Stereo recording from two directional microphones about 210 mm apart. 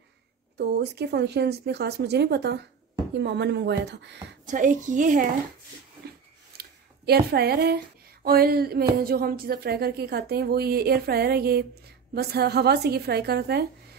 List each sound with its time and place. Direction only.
0.6 s speech: 50° right (ahead or behind)
4.5 s a woman's voice: 35° right (ahead or behind)
6.5 s speech: 45° right (ahead or behind)